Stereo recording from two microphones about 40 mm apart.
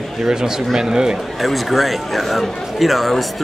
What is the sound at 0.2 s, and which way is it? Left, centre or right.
Speech, centre.